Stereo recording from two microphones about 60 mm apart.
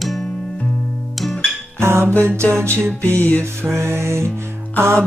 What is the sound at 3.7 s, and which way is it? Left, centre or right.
Music, right.